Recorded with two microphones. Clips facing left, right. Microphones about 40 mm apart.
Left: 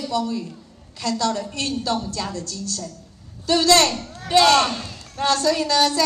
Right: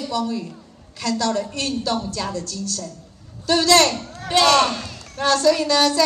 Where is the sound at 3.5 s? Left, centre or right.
Right.